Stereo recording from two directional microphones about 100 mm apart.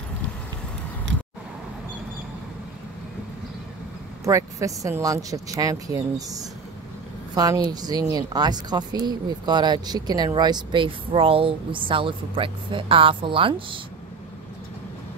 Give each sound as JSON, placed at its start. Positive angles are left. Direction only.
{"t": 4.2, "sound": "speech", "side_deg": -30}